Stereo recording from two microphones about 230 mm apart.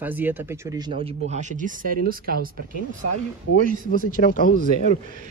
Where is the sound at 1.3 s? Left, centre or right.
Right.